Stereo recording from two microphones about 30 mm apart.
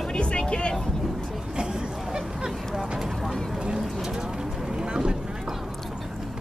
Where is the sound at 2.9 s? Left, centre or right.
Centre.